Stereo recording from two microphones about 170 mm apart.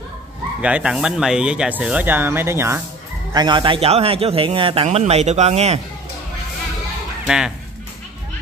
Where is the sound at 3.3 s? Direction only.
25° right (ahead or behind).